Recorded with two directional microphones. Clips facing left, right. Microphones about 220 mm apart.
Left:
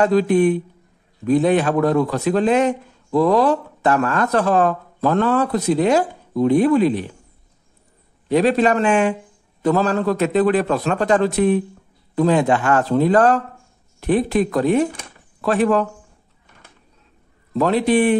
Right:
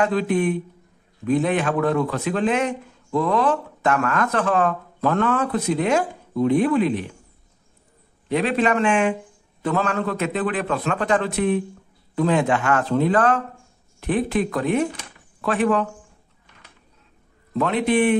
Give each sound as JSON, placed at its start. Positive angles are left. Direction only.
{"t": 0.0, "sound": "speech", "side_deg": 35}
{"t": 8.3, "sound": "speech", "side_deg": 40}
{"t": 17.6, "sound": "speech", "side_deg": 35}